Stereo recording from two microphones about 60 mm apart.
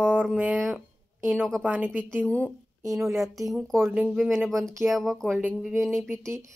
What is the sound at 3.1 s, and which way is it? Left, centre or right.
Speech, centre.